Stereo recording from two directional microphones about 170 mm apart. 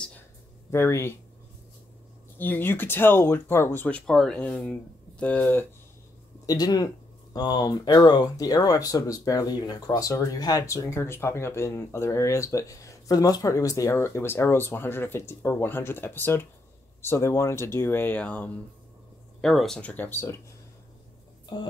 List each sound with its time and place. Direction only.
0.7 s speech: 15° left (ahead or behind)
2.3 s speech: 10° left (ahead or behind)
6.4 s speech: 20° left (ahead or behind)